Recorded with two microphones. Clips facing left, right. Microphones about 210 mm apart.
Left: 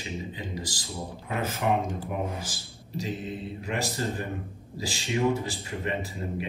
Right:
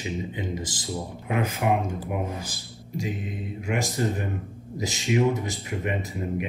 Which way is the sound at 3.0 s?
15° right (ahead or behind).